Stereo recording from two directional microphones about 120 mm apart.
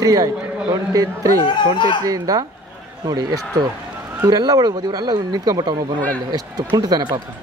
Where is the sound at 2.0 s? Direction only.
30° right (ahead or behind).